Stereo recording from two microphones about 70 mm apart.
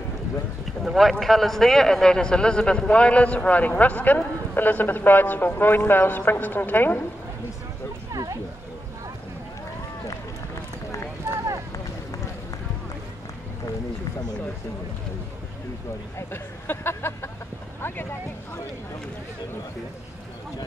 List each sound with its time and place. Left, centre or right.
0.8 s a man's voice: centre; by 7.1 s left
8.1 s a sound: right
16.2 s speech: left